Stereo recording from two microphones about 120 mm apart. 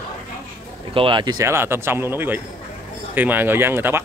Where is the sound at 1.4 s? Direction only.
20° right (ahead or behind).